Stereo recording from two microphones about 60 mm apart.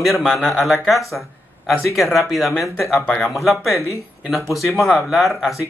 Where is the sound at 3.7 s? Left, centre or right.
Left.